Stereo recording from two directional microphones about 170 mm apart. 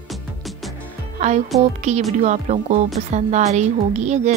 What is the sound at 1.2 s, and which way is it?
Speech, 45° right (ahead or behind).